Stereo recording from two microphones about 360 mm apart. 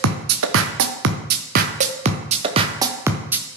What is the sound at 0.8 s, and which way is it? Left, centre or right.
Music, right.